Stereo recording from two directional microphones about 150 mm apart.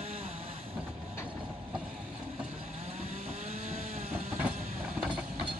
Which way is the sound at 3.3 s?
45° right (ahead or behind).